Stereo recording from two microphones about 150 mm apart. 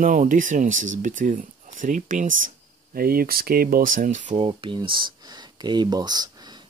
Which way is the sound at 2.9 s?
80° right.